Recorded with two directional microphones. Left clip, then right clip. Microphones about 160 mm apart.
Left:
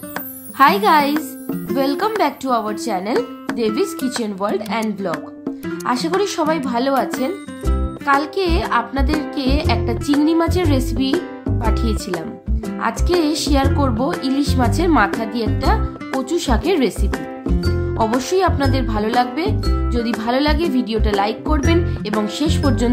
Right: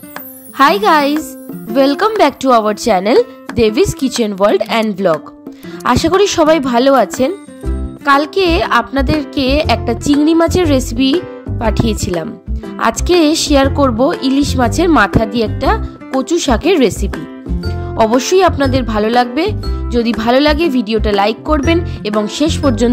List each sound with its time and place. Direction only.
0.6 s a woman's voice: 45° right (ahead or behind)
17.1 s music: centre (ahead or behind)
17.9 s speech: 50° right (ahead or behind)